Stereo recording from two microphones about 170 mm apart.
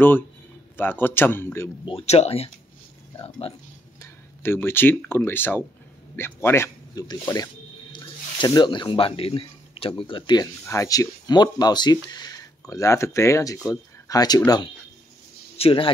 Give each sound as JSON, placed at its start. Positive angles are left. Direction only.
{"t": 0.7, "sound": "speech", "side_deg": 10}
{"t": 1.9, "sound": "speech", "side_deg": 35}
{"t": 4.0, "sound": "speech", "side_deg": 15}
{"t": 15.5, "sound": "speech", "side_deg": 35}